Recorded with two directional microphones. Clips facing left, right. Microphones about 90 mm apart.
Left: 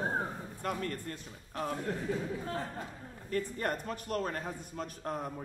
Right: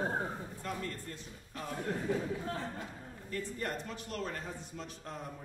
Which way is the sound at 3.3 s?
50° left (ahead or behind).